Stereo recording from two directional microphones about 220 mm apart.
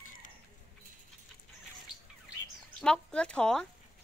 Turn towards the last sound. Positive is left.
turn(degrees=5)  # may be behind; listen again after turning